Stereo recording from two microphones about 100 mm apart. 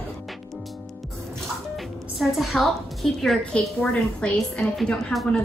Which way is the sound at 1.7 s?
Centre (ahead or behind).